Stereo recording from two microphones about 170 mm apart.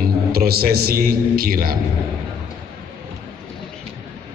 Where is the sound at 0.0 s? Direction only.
60° right (ahead or behind).